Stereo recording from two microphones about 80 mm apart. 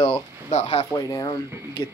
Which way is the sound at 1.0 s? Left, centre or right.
Left.